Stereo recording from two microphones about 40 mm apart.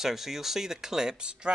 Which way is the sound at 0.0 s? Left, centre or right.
Centre.